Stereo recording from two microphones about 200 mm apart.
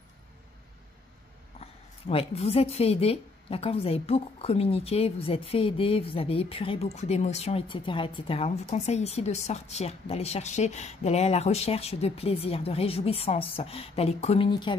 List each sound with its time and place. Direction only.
1.6 s a woman's voice: 30° left (ahead or behind)